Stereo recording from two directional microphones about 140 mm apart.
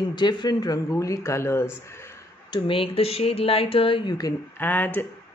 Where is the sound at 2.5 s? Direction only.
40° left (ahead or behind).